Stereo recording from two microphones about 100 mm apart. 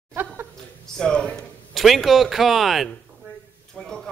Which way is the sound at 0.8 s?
5° left (ahead or behind).